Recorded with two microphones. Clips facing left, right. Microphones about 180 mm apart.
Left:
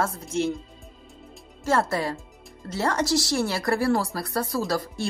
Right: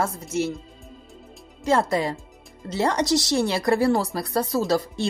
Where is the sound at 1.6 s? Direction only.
15° right (ahead or behind).